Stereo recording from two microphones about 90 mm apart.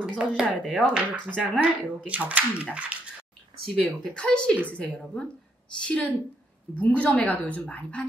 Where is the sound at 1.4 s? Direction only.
15° right (ahead or behind).